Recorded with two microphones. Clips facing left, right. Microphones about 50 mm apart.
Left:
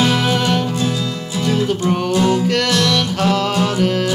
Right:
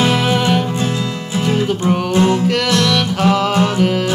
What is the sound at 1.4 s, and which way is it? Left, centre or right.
Music, right.